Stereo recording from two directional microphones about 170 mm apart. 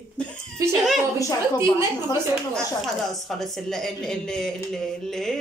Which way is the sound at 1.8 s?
25° left (ahead or behind).